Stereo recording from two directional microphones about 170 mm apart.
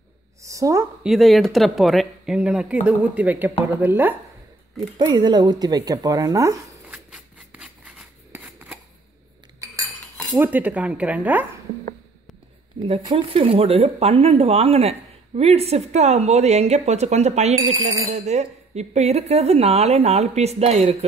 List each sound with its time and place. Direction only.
0.4 s a woman's voice: 20° right (ahead or behind)
1.0 s speech: centre (ahead or behind)
5.0 s speech: 25° right (ahead or behind)
6.9 s a sound: 5° right (ahead or behind)
10.4 s speech: 10° right (ahead or behind)
13.0 s speech: 30° right (ahead or behind)